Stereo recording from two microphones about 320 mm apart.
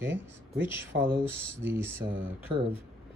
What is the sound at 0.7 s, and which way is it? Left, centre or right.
Speech, centre.